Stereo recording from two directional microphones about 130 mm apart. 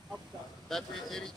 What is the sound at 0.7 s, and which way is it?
Speech, 5° left (ahead or behind).